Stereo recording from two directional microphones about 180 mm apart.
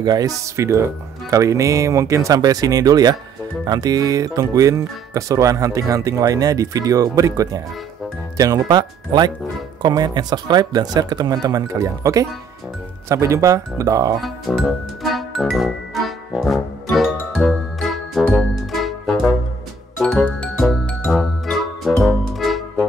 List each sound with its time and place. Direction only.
0.0 s speech: 20° right (ahead or behind)
14.2 s speech: centre (ahead or behind)
15.1 s music: centre (ahead or behind)